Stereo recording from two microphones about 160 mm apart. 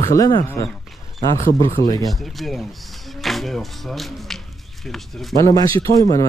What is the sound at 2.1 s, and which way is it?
Speech, centre (ahead or behind).